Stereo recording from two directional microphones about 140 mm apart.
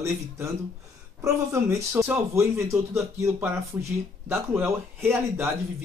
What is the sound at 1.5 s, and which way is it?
A man's voice, 15° right (ahead or behind).